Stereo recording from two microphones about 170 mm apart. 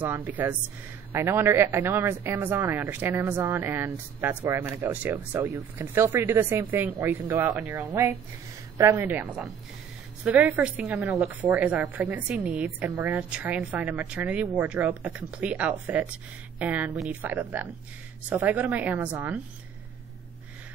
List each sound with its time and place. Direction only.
0.0 s speech: 10° right (ahead or behind)